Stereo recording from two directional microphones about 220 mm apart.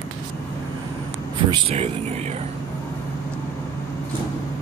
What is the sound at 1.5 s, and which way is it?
Speech, 25° right (ahead or behind).